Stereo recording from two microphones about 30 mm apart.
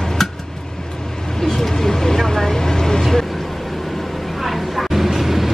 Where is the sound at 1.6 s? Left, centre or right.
Centre.